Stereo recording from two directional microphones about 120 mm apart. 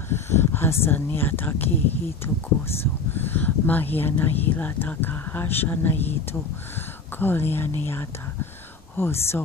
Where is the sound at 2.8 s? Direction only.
15° left (ahead or behind).